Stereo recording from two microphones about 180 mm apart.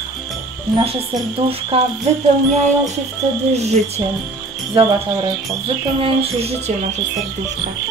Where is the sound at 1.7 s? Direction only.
30° right (ahead or behind).